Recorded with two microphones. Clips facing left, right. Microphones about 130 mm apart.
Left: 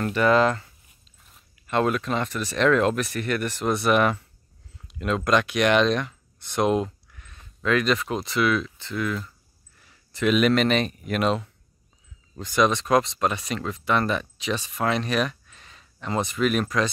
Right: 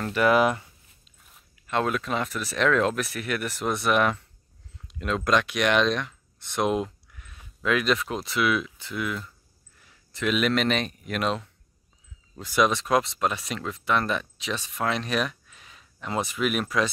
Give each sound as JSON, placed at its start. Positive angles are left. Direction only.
{"t": 0.0, "sound": "speech", "side_deg": -5}
{"t": 1.2, "sound": "speech", "side_deg": 0}